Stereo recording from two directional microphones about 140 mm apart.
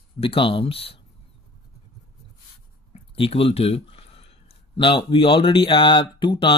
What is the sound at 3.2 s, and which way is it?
Speech, 40° left (ahead or behind).